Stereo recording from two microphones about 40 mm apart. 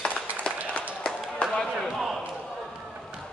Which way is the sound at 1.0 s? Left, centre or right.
Left.